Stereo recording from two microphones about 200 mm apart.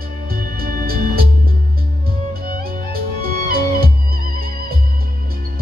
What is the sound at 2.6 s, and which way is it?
Music, 50° right (ahead or behind).